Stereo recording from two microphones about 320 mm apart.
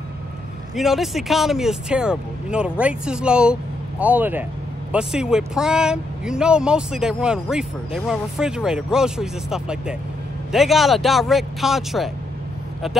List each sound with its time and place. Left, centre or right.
0.7 s speech: centre